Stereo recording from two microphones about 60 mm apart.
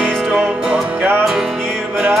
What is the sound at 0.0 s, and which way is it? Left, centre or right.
Music, centre.